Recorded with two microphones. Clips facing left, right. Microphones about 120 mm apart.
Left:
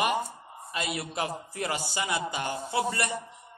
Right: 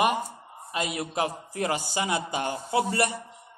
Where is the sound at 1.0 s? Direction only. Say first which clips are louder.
Right 4 dB; 45° right (ahead or behind).